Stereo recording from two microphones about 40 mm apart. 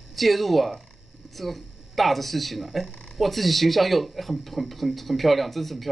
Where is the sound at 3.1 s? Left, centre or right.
Centre.